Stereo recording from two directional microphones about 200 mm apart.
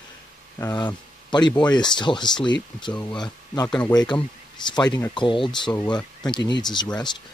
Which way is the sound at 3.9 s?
20° left (ahead or behind).